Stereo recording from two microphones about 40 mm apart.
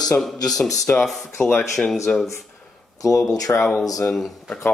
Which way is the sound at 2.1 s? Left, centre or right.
Left.